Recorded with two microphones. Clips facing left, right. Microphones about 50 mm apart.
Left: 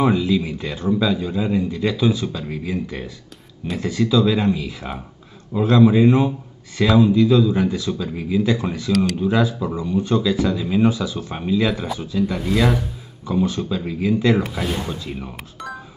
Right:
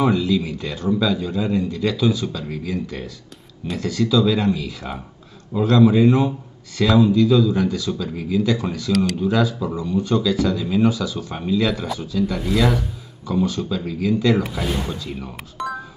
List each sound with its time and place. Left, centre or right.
0.0 s a man's voice: centre
12.4 s speech: centre
13.3 s speech: centre
14.4 s speech: centre